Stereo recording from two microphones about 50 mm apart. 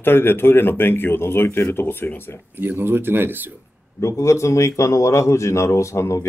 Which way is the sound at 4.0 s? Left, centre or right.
Left.